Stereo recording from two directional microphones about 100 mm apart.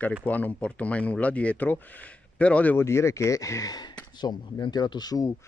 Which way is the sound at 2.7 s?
25° left (ahead or behind).